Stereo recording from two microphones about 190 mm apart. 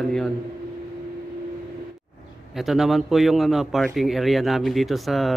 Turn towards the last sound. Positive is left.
turn(degrees=0)  # may be behind; listen again after turning